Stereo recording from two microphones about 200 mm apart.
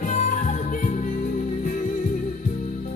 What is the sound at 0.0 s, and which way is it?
Music, 40° left (ahead or behind).